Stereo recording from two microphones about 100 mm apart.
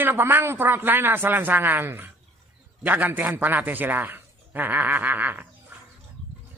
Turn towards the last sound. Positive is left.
turn(degrees=-20)  # may be behind; listen again after turning